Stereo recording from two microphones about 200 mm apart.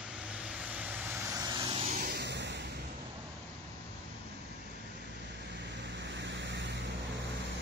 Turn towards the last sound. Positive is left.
turn(degrees=-60)  # may be behind; listen again after turning